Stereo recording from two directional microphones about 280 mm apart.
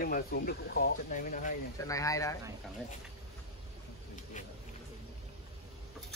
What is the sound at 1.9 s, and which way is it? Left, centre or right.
Speech, centre.